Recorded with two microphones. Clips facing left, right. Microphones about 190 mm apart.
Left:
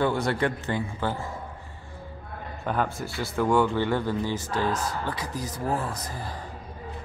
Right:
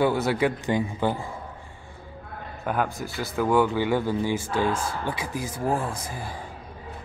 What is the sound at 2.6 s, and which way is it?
Speech, 10° right (ahead or behind).